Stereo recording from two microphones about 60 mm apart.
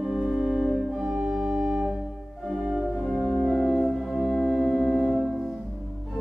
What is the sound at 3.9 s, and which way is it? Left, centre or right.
Music, centre.